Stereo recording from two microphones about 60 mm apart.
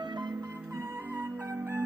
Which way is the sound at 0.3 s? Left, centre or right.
Right.